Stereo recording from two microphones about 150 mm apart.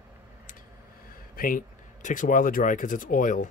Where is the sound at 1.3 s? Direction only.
70° left (ahead or behind).